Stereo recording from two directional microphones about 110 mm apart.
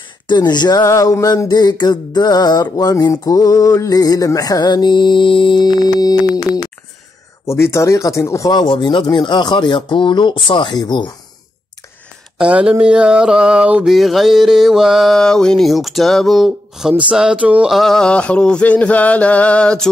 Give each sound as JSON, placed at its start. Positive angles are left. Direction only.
{"t": 0.3, "sound": "a sound", "side_deg": 40}
{"t": 7.4, "sound": "speech", "side_deg": 25}
{"t": 12.4, "sound": "mantra", "side_deg": -10}
{"t": 17.7, "sound": "music", "side_deg": 5}